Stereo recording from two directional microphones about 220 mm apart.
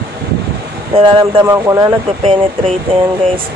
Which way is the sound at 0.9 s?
25° right (ahead or behind).